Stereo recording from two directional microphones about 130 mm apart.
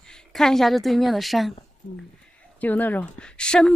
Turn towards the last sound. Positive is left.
turn(degrees=5)  # may be behind; listen again after turning